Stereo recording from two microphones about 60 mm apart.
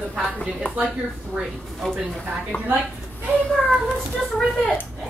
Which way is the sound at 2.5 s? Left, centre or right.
Left.